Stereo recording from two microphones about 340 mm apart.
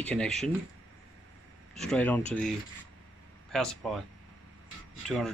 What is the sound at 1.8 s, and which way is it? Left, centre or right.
Speech, centre.